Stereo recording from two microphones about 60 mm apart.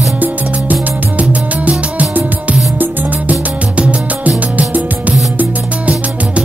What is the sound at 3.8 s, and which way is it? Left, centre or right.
Music, right.